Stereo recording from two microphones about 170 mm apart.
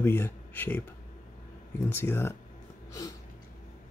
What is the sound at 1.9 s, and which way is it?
Speech, 15° left (ahead or behind).